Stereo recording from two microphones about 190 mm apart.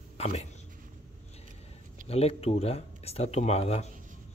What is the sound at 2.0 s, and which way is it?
Speech, 30° left (ahead or behind).